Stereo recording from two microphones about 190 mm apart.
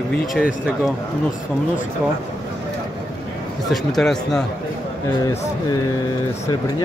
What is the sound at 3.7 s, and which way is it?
Speech, centre (ahead or behind).